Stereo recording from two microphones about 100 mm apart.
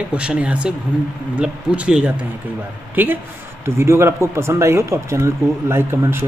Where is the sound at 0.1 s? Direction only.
10° right (ahead or behind).